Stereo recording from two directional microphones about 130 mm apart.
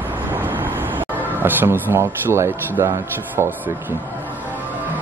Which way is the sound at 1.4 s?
15° right (ahead or behind).